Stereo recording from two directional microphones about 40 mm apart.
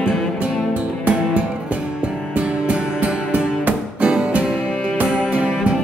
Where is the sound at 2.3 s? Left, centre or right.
Right.